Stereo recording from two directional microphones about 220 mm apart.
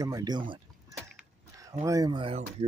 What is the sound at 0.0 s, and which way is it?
Speech, 15° right (ahead or behind).